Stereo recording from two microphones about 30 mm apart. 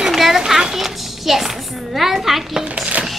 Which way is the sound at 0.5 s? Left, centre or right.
Centre.